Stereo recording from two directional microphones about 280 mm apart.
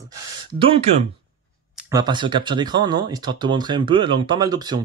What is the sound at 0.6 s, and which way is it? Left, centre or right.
Speech, centre.